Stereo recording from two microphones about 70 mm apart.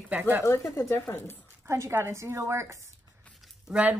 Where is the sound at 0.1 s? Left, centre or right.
Right.